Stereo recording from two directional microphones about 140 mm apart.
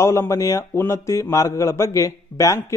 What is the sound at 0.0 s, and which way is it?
Speech, 20° left (ahead or behind).